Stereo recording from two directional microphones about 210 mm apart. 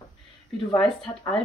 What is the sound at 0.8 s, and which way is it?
Speech, 5° left (ahead or behind).